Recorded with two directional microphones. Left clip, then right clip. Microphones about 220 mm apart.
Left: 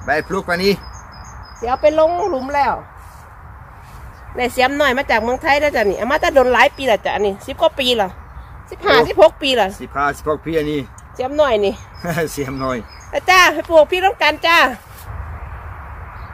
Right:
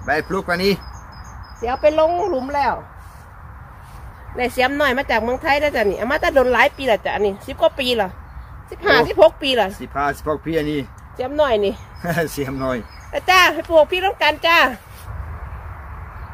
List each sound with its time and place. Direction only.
0.0 s speech: centre (ahead or behind)
1.6 s a child's voice: 15° left (ahead or behind)
4.4 s a woman's voice: 20° left (ahead or behind)
9.8 s speech: 5° right (ahead or behind)
11.1 s a child's voice: 15° left (ahead or behind)
12.0 s speech: 10° right (ahead or behind)
13.1 s a child's voice: 15° left (ahead or behind)